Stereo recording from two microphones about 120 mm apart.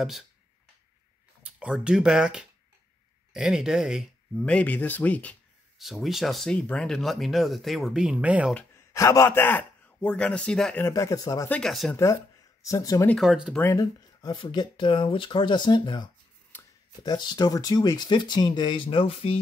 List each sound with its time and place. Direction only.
1.4 s speech: 10° right (ahead or behind)
4.4 s speech: 10° left (ahead or behind)
5.8 s speech: centre (ahead or behind)
8.7 s a man's voice: 25° left (ahead or behind); by 10.8 s 10° left (ahead or behind)
10.8 s speech: 25° left (ahead or behind)
11.4 s speech: 10° left (ahead or behind)
12.6 s speech: 30° left (ahead or behind)
13.2 s speech: 5° right (ahead or behind)
13.5 s speech: 15° left (ahead or behind)
13.7 s speech: 35° left (ahead or behind)
16.5 s a sound: 15° left (ahead or behind)
17.0 s speech: 35° left (ahead or behind)